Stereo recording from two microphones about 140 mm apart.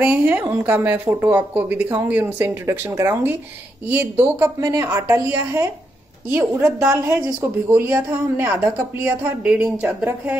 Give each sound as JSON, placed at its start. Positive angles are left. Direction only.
{"t": 0.0, "sound": "a woman's voice", "side_deg": -15}